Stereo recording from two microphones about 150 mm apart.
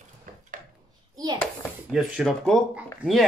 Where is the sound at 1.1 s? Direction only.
25° right (ahead or behind).